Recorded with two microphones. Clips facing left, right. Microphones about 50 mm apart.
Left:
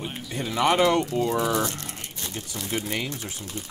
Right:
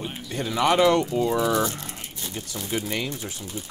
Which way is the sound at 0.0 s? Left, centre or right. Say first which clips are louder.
Right 1 dB; centre.